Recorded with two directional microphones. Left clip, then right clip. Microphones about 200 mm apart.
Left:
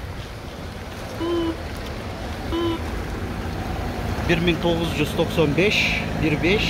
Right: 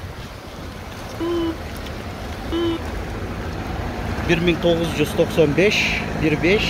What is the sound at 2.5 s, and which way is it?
Vehicle, 55° right (ahead or behind).